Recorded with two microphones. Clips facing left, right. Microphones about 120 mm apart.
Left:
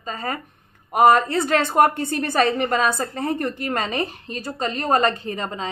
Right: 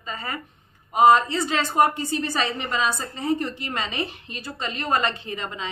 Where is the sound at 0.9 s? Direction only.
55° left (ahead or behind).